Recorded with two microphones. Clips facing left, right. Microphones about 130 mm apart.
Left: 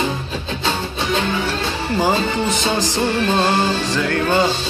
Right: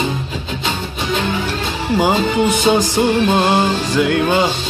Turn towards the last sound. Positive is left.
turn(degrees=-15)  # may be behind; listen again after turning